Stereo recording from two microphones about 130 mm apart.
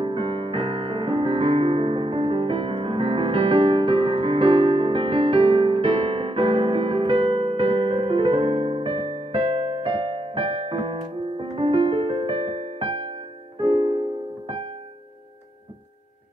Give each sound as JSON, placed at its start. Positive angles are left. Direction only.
{"t": 0.0, "sound": "music", "side_deg": -40}